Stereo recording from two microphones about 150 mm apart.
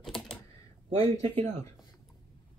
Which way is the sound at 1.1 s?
45° right (ahead or behind).